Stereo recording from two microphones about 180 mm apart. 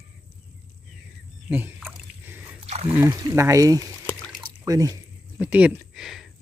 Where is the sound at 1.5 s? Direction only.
10° right (ahead or behind).